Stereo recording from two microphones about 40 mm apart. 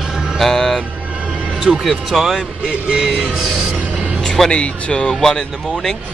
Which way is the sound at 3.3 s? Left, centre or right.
Centre.